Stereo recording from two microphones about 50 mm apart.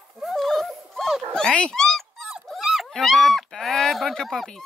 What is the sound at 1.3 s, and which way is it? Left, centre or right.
Speech, centre.